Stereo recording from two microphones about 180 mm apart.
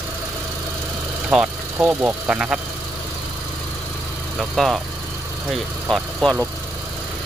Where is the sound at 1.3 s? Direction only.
10° right (ahead or behind).